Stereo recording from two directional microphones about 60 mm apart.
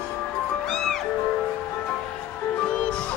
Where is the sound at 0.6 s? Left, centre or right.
Centre.